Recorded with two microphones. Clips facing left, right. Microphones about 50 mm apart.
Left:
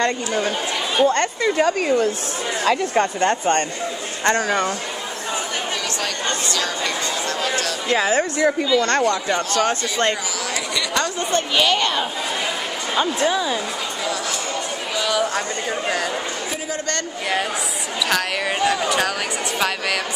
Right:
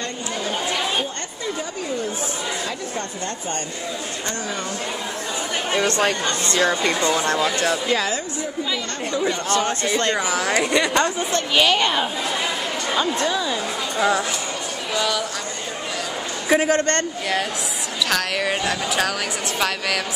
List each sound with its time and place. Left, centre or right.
0.9 s speech: left
4.3 s speech: left
5.8 s speech: right
7.9 s speech: left
8.2 s speech: left
9.7 s speech: left
10.5 s speech: right
11.5 s a woman's voice: centre
12.9 s speech: centre
15.0 s speech: centre
16.4 s a man's voice: right
18.1 s speech: centre